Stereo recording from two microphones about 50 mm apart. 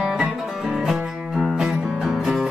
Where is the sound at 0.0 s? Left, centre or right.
Centre.